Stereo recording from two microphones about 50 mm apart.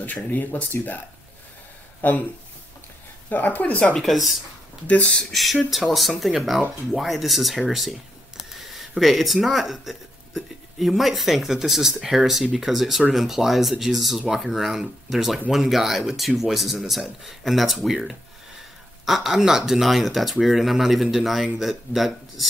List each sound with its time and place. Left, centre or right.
0.0 s speech: left
3.3 s speech: left
4.0 s speech: centre